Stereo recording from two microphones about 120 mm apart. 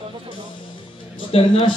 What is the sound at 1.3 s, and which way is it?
Speech, 40° left (ahead or behind).